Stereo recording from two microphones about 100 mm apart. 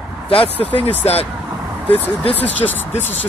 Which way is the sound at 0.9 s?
90° left.